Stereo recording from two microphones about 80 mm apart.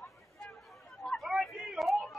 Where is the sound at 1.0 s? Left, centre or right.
Centre.